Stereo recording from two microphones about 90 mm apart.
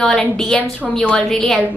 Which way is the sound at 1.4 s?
5° left (ahead or behind).